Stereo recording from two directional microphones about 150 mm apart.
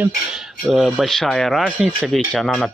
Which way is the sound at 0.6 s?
Centre (ahead or behind).